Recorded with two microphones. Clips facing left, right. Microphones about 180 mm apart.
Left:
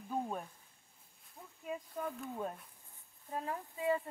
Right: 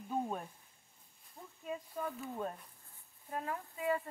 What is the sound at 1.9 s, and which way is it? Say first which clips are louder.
Speech: even; centre (ahead or behind).